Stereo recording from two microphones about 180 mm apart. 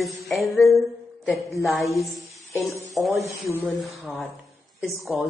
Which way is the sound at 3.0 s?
Centre (ahead or behind).